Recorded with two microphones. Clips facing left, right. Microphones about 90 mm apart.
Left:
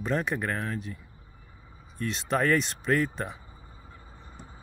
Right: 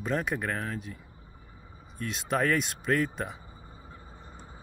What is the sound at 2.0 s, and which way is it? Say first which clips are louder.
Speech: left 1 dB; 5° right (ahead or behind).